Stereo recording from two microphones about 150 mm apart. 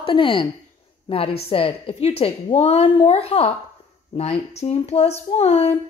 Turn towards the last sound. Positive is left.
turn(degrees=45)  # may be behind; listen again after turning